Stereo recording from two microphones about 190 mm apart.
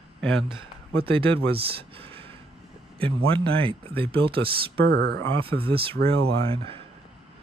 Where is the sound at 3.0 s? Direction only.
30° right (ahead or behind).